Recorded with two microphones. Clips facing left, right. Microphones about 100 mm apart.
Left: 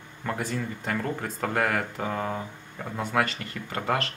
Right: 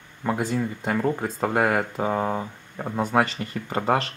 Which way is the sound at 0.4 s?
20° right (ahead or behind).